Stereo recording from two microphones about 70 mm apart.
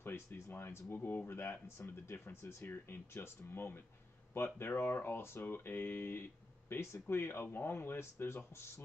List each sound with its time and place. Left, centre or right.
0.0 s speech: left